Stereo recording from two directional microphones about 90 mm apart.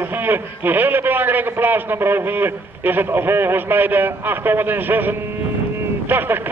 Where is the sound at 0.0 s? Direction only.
25° right (ahead or behind).